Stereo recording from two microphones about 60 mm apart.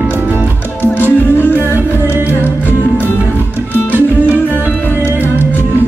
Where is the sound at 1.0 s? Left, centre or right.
Left.